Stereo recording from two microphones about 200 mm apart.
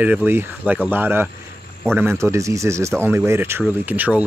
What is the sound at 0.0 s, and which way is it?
Speech, 10° right (ahead or behind).